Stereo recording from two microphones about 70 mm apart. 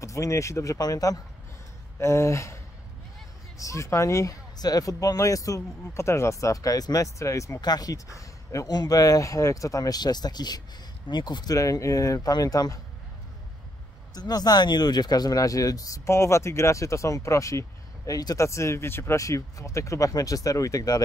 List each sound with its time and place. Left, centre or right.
0.0 s speech: left
0.7 s speech: left
2.0 s speech: left
4.6 s speech: left
7.6 s speech: left
11.1 s speech: left
11.5 s speech: left
14.1 s speech: left
16.1 s speech: left
19.1 s speech: left